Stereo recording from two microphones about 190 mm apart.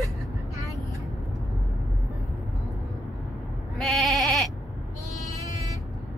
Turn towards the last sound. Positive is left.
turn(degrees=15)  # may be behind; listen again after turning